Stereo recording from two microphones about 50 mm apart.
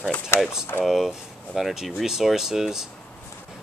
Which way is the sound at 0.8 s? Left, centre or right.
Centre.